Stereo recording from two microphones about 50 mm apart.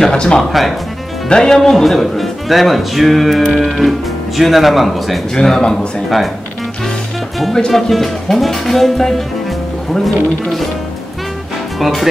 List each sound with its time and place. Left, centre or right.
0.0 s speech: centre
0.4 s speech: centre
1.3 s speech: centre
7.5 s speech: centre
7.9 s music: centre
11.8 s speech: centre